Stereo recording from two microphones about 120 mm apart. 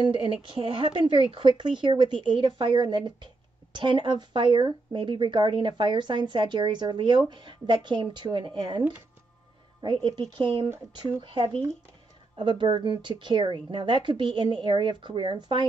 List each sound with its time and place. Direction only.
0.2 s speech: 45° right (ahead or behind)
10.3 s speech: 45° right (ahead or behind)